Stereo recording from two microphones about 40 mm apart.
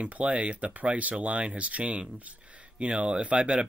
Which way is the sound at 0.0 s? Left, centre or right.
Right.